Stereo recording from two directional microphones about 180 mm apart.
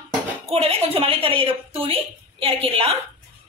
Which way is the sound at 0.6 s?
35° right (ahead or behind).